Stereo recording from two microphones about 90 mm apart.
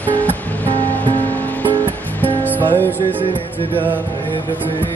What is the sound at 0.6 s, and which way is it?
Music, 20° left (ahead or behind).